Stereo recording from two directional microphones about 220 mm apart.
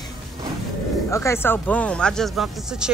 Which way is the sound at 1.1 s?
10° left (ahead or behind).